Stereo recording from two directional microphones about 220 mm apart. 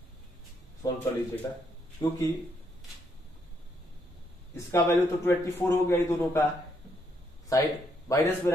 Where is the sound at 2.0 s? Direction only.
20° left (ahead or behind).